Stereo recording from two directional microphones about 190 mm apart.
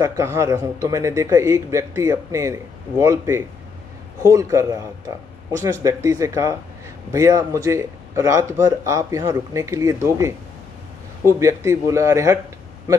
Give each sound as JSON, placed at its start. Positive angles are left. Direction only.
{"t": 0.0, "sound": "a man's voice", "side_deg": -15}